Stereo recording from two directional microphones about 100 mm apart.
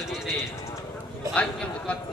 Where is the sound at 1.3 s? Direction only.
10° left (ahead or behind).